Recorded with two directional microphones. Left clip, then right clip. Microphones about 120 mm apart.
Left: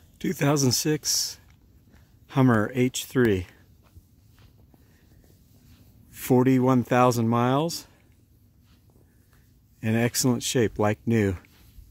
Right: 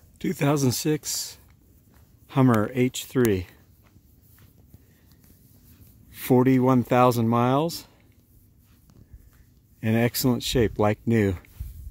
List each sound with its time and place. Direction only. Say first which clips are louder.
0.2 s speech: even; 5° right (ahead or behind)
6.1 s speech: right 1 dB; 10° right (ahead or behind)
9.8 s speech: right 2 dB; 15° right (ahead or behind)
10.1 s speech: right 1 dB; 5° right (ahead or behind)